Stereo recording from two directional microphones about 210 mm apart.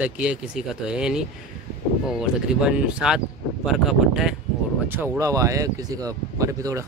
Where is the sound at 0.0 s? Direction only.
5° right (ahead or behind).